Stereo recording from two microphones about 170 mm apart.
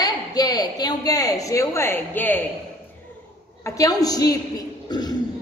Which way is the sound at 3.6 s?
20° left (ahead or behind).